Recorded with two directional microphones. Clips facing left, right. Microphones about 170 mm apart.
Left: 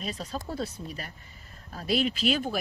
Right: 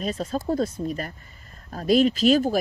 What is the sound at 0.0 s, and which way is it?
Speech, 45° right (ahead or behind).